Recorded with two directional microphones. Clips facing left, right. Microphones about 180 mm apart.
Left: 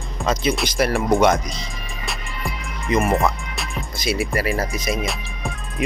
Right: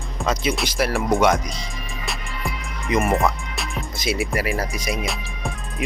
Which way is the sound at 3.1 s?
Centre (ahead or behind).